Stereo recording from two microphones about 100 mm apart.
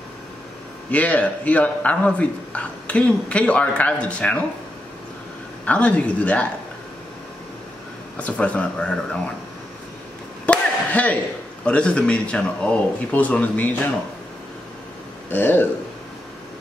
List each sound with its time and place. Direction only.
0.9 s speech: 15° left (ahead or behind)
5.7 s speech: 15° left (ahead or behind)
8.2 s speech: 15° left (ahead or behind)
10.4 s a sound: 15° left (ahead or behind)
11.6 s speech: 10° left (ahead or behind)
15.3 s speech: 20° left (ahead or behind)